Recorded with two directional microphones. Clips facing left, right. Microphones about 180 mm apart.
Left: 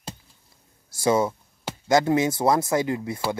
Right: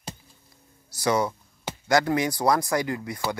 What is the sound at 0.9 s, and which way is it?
Speech, 25° left (ahead or behind).